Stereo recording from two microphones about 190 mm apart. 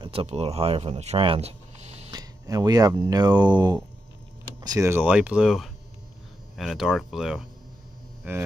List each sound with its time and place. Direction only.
0.0 s speech: 30° right (ahead or behind)
2.0 s speech: 20° right (ahead or behind); by 7.4 s centre (ahead or behind)
8.2 s a sound: 10° right (ahead or behind)